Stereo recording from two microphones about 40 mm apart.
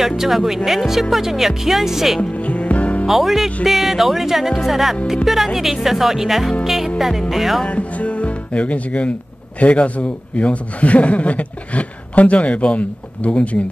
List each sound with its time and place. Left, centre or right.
0.0 s speech: centre
2.3 s music: left
3.1 s speech: centre
6.6 s music: centre
7.0 s speech: centre
7.6 s speech: left